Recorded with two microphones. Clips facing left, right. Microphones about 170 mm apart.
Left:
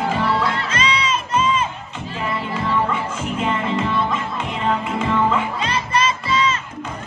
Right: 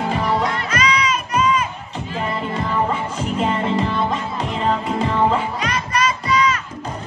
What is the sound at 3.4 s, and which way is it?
Music, 35° right (ahead or behind).